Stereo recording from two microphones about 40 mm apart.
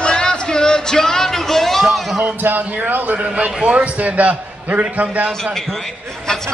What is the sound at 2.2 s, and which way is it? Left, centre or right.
Speech, right.